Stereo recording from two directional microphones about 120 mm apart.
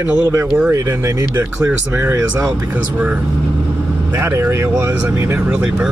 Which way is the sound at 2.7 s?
15° right (ahead or behind).